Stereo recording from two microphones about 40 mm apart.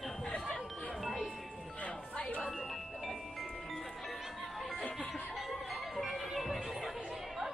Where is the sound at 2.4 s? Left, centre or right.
Centre.